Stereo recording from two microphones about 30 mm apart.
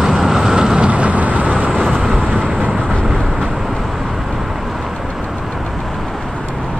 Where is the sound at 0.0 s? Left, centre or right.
Centre.